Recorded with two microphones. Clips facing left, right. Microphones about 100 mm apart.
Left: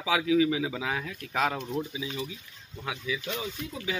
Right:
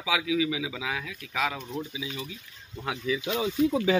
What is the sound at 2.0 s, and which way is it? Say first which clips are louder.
Speech: left 2 dB; 30° left (ahead or behind).